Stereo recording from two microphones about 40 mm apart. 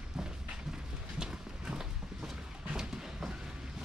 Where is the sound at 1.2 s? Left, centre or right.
Centre.